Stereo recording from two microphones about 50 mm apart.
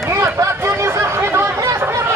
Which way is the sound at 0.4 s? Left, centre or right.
Right.